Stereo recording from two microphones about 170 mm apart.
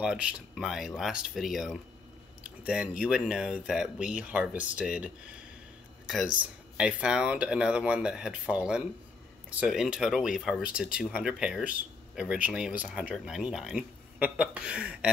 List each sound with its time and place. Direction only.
0.0 s speech: 5° right (ahead or behind)
6.8 s speech: 5° right (ahead or behind)